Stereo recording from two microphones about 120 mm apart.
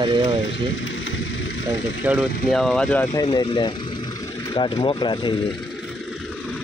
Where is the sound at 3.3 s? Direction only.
40° left (ahead or behind).